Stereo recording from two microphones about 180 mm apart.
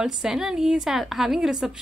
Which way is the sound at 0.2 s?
5° right (ahead or behind).